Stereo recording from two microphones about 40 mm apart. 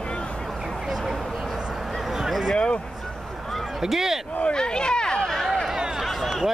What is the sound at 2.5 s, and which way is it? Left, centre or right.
Speech, left.